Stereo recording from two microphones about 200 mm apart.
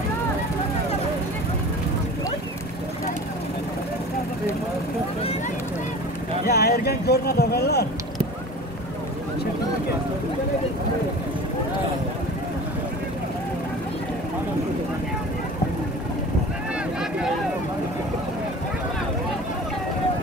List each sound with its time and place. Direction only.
6.4 s speech: 50° left (ahead or behind)